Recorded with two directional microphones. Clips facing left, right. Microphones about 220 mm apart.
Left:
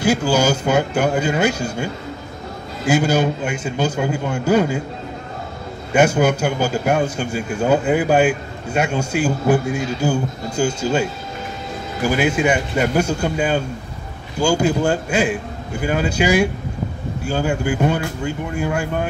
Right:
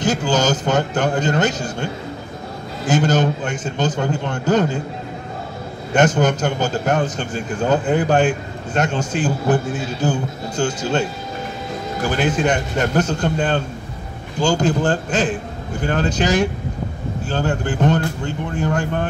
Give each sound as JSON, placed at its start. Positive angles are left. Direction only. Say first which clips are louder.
{"t": 0.0, "sound": "a man's voice", "louder": "left 2 dB", "side_deg": 10}
{"t": 5.9, "sound": "a man's voice", "louder": "left 1 dB", "side_deg": 10}